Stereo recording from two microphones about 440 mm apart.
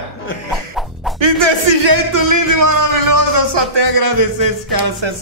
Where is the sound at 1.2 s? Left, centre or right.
Right.